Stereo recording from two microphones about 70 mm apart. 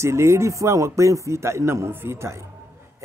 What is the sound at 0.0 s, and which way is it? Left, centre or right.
A man's voice, right.